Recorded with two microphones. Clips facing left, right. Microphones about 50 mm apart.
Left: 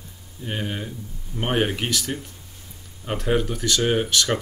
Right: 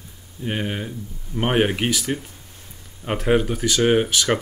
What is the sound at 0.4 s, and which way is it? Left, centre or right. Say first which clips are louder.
Speech: right 3 dB; centre.